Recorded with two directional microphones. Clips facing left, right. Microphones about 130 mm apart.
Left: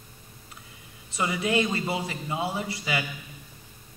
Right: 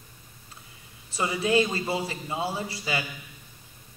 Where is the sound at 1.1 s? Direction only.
30° right (ahead or behind).